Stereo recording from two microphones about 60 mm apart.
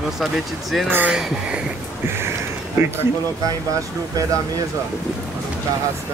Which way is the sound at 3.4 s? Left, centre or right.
Right.